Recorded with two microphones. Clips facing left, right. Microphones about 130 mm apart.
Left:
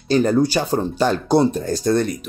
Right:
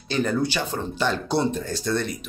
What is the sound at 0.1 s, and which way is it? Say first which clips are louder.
Speech: left 7 dB; 40° left (ahead or behind).